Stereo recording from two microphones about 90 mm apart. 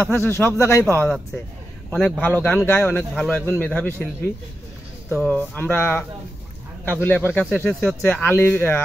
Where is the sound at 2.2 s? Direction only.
20° left (ahead or behind).